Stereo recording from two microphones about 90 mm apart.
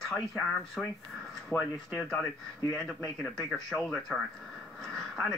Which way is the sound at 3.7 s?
5° right (ahead or behind).